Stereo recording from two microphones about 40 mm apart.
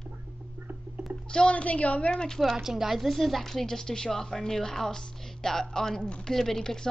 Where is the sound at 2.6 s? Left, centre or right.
Centre.